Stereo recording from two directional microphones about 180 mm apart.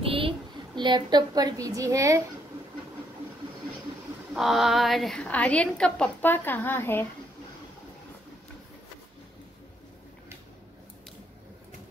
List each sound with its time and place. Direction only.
0.0 s a sound: 30° right (ahead or behind)
0.7 s a woman's voice: 25° right (ahead or behind)
4.3 s a woman's voice: centre (ahead or behind)